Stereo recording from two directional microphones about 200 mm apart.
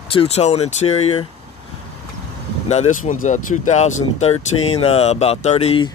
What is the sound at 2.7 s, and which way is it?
Speech, 35° left (ahead or behind).